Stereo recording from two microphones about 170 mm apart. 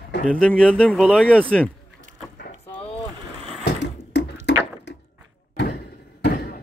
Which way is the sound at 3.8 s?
90° left.